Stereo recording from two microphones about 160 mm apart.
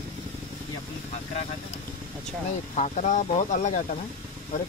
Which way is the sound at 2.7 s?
50° left (ahead or behind).